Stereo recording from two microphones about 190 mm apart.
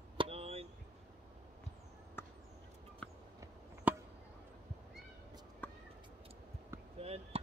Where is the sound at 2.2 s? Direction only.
10° left (ahead or behind).